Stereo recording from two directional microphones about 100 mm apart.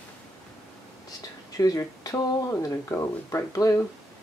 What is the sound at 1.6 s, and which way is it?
Speech, 35° left (ahead or behind).